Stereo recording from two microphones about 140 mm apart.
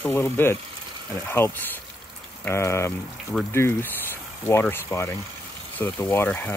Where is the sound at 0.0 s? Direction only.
15° left (ahead or behind).